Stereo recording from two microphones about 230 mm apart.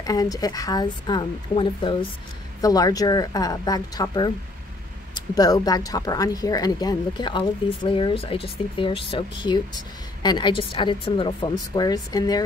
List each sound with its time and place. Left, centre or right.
0.0 s speech: centre